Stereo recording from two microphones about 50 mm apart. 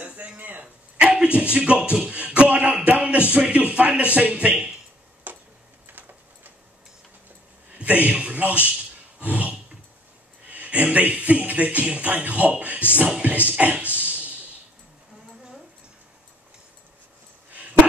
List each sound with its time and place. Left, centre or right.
0.0 s a sound: right
1.1 s a sound: centre
1.5 s speech: right
5.3 s tick-tock: right
7.8 s a man's voice: right
9.2 s music: right
13.2 s speech: right